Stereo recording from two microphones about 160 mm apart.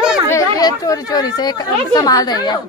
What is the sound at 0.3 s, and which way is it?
Speech, 20° left (ahead or behind).